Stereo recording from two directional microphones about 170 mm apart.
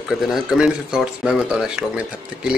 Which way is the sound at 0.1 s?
5° right (ahead or behind).